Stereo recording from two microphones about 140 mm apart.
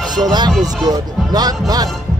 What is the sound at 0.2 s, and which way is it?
Speech, 30° right (ahead or behind).